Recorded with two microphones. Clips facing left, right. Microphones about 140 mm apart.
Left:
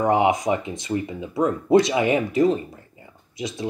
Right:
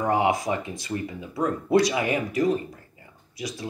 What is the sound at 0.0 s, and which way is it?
Speech, 20° left (ahead or behind).